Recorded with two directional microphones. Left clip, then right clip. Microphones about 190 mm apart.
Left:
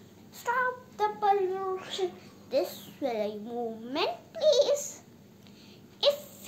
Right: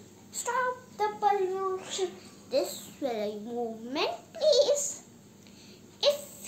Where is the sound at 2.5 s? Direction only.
10° right (ahead or behind).